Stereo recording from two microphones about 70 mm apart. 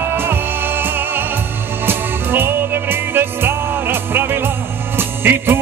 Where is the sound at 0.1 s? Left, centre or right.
Right.